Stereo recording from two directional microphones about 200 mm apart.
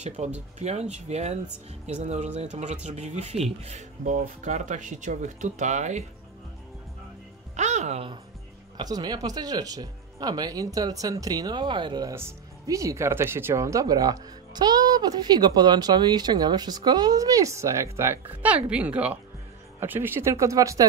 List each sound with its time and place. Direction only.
0.2 s speech: 30° right (ahead or behind)
7.5 s music: 35° right (ahead or behind)
8.7 s speech: 20° right (ahead or behind)